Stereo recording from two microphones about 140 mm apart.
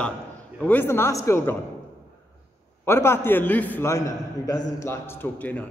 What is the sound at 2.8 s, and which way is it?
A man's voice, 20° left (ahead or behind).